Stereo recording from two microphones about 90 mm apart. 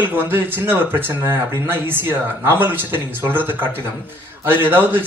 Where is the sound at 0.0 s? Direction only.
20° right (ahead or behind).